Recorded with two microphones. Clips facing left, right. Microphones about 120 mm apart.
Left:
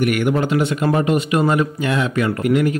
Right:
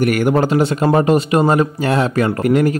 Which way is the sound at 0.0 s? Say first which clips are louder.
Right 3 dB; 40° right (ahead or behind).